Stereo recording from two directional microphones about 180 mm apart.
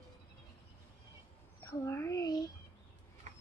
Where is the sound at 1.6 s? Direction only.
15° left (ahead or behind).